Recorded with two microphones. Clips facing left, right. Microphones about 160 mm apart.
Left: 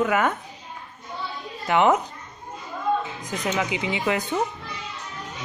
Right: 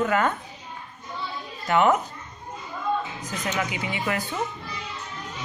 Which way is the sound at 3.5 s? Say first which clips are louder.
Left 3 dB; 20° left (ahead or behind).